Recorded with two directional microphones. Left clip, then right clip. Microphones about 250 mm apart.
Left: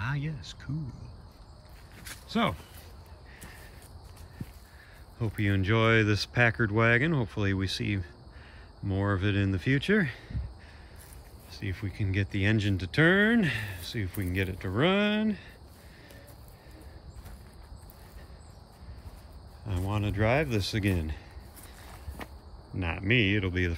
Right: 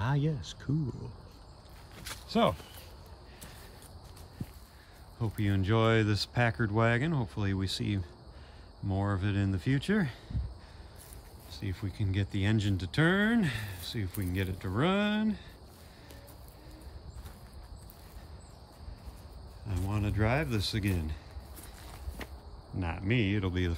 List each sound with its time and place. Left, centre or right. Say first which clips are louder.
0.0 s speech: right 2 dB; centre
2.2 s a sound: right 2 dB; centre
5.2 s speech: left 4 dB; centre
11.5 s speech: left 3 dB; centre
19.8 s speech: left 4 dB; centre
22.8 s speech: left 6 dB; centre